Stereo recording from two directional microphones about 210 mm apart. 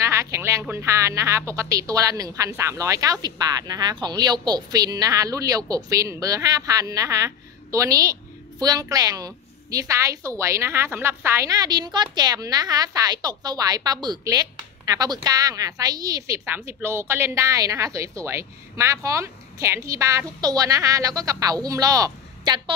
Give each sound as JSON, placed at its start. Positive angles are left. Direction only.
{"t": 0.0, "sound": "speech", "side_deg": -15}